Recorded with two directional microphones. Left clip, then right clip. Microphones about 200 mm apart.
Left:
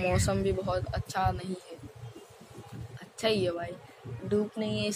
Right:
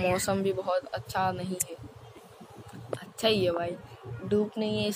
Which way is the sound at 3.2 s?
5° right (ahead or behind).